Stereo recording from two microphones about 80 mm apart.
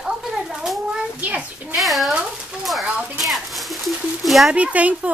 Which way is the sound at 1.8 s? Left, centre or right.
Centre.